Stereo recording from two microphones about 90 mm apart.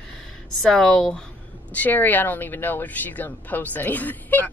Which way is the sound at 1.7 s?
20° left (ahead or behind).